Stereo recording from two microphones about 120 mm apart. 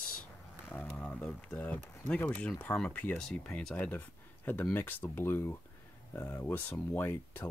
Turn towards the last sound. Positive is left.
turn(degrees=15)  # may be behind; listen again after turning